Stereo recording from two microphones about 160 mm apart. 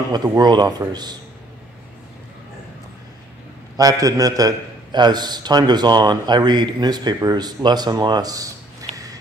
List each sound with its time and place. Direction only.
0.4 s a man's voice: 25° right (ahead or behind)
3.7 s a man's voice: 20° right (ahead or behind)